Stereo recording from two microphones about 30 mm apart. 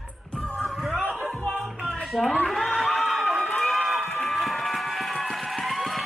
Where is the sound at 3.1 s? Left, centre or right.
Centre.